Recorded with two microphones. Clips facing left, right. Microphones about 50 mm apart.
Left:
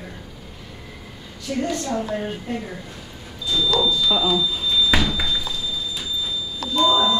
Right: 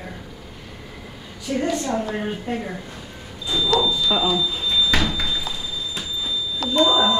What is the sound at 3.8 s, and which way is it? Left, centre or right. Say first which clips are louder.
Speech: even; centre.